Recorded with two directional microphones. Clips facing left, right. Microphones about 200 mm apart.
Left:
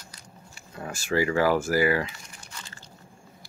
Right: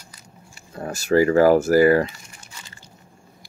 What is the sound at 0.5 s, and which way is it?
Speech, 40° right (ahead or behind).